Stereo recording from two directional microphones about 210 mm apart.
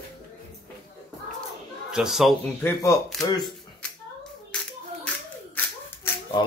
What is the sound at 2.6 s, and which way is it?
Speech, 10° left (ahead or behind).